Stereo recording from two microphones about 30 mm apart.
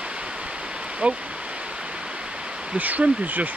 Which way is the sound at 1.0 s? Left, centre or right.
Right.